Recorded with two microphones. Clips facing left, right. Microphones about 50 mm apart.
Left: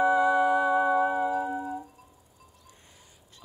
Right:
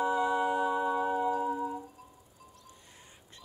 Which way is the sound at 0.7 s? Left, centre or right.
Left.